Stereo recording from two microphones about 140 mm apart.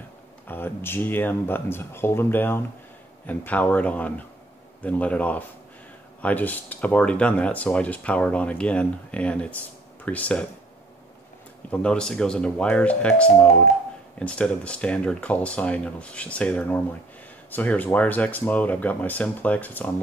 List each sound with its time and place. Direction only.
0.5 s speech: 15° left (ahead or behind)
11.7 s speech: 5° left (ahead or behind)